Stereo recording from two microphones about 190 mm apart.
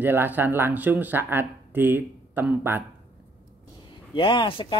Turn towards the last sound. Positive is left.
turn(degrees=25)  # may be behind; listen again after turning